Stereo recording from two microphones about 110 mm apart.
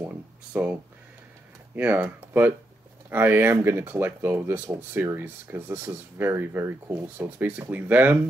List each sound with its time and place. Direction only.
0.5 s speech: 10° right (ahead or behind)
1.8 s speech: 15° right (ahead or behind)